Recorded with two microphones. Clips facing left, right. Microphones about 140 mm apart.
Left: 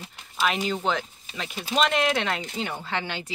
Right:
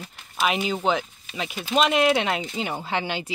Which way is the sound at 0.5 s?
10° right (ahead or behind).